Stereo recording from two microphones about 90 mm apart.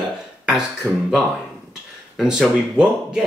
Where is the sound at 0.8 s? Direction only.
30° right (ahead or behind).